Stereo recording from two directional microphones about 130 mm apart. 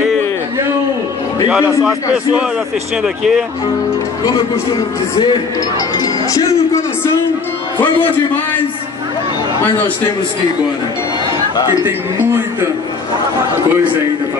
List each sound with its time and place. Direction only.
3.0 s speech: 5° right (ahead or behind)
5.9 s speech: 25° left (ahead or behind)